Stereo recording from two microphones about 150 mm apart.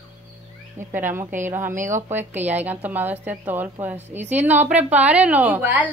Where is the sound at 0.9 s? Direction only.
15° right (ahead or behind).